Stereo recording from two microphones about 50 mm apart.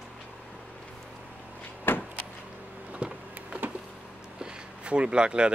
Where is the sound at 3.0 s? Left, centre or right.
Right.